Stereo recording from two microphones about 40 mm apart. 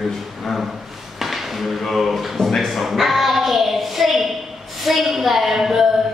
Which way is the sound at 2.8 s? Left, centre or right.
Centre.